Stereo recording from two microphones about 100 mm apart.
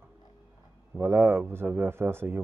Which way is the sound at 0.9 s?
20° right (ahead or behind).